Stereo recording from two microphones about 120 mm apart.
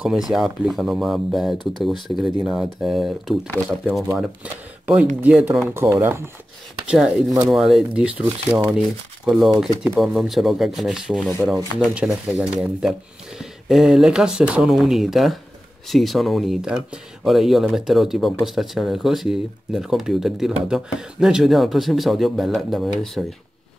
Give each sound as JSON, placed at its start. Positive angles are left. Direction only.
{"t": 0.0, "sound": "speech", "side_deg": -5}
{"t": 5.8, "sound": "speech", "side_deg": -20}
{"t": 6.9, "sound": "speech", "side_deg": -5}